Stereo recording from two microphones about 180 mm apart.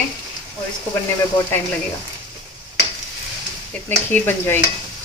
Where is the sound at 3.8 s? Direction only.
10° left (ahead or behind).